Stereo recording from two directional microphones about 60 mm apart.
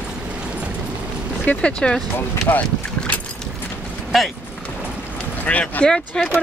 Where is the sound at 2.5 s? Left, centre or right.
Left.